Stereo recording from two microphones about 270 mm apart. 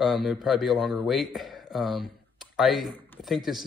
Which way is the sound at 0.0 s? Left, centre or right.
Centre.